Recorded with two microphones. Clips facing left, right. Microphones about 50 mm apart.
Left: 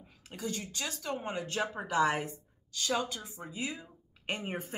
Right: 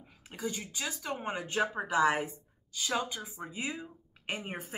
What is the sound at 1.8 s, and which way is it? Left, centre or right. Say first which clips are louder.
Speech: right 1 dB; centre.